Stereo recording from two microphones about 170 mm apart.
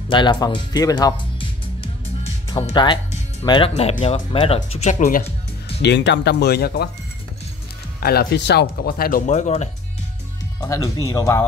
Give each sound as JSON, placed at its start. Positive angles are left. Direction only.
{"t": 0.1, "sound": "speech", "side_deg": 25}
{"t": 2.7, "sound": "speech", "side_deg": 25}
{"t": 5.8, "sound": "speech", "side_deg": 90}
{"t": 8.0, "sound": "speech", "side_deg": 65}
{"t": 10.6, "sound": "speech", "side_deg": 20}